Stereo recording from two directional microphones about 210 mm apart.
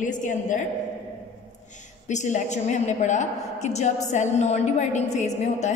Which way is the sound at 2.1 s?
35° left (ahead or behind).